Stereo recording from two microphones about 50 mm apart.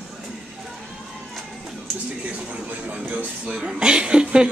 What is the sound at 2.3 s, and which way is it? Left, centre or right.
Speech, right.